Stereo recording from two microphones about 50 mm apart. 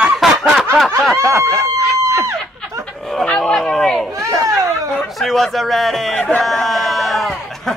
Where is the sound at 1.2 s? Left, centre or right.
Centre.